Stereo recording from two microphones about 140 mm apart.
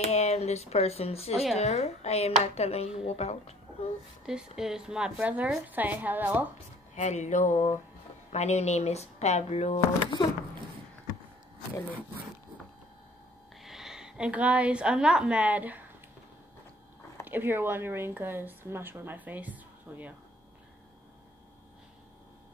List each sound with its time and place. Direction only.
0.0 s speech: 50° left (ahead or behind)
4.3 s a woman's voice: 5° right (ahead or behind)
7.0 s a sound: 55° left (ahead or behind)
8.3 s speech: 50° left (ahead or behind)
13.6 s a woman's voice: 5° right (ahead or behind)
17.3 s a woman's voice: 15° right (ahead or behind)